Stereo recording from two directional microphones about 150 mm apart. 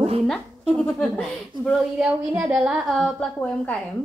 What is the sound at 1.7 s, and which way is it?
A woman's voice, 5° right (ahead or behind).